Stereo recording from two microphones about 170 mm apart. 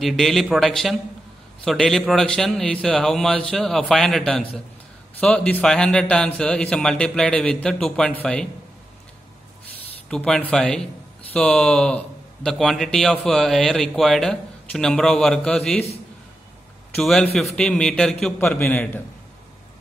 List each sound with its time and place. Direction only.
0.0 s a man's voice: centre (ahead or behind)
10.0 s a man's voice: 5° left (ahead or behind)
16.9 s a man's voice: 5° left (ahead or behind)